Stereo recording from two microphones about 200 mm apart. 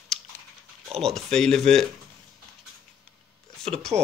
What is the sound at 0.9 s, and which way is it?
Speech, centre (ahead or behind).